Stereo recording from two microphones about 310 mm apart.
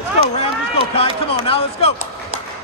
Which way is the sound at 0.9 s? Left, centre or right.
Centre.